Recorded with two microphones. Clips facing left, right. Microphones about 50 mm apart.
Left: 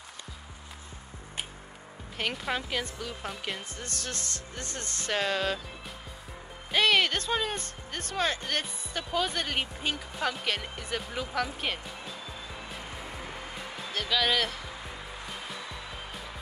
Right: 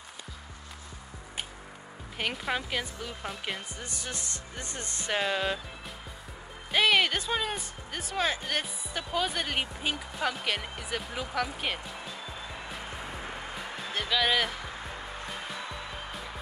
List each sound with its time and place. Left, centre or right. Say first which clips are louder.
2.1 s speech: even; centre
3.8 s speech: left 1 dB; centre
6.7 s speech: even; centre
14.0 s speech: even; centre